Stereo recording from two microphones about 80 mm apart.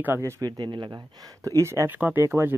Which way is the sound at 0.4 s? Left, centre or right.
Right.